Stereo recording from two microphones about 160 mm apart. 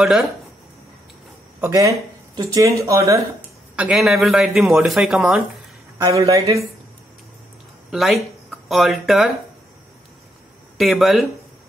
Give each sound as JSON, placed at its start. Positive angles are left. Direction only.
{"t": 0.0, "sound": "speech", "side_deg": 0}
{"t": 1.6, "sound": "speech", "side_deg": -20}
{"t": 3.7, "sound": "speech", "side_deg": -5}
{"t": 5.9, "sound": "speech", "side_deg": -20}
{"t": 7.9, "sound": "speech", "side_deg": 0}
{"t": 10.8, "sound": "speech", "side_deg": 0}